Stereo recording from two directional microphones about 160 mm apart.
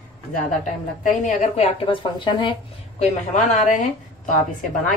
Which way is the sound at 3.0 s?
50° left (ahead or behind).